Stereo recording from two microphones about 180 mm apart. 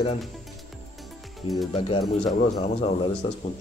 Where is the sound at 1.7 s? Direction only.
35° left (ahead or behind).